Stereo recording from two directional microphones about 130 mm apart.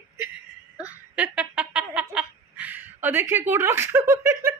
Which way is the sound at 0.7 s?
10° right (ahead or behind).